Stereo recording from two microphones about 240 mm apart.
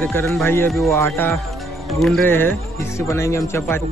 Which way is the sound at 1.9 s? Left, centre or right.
Centre.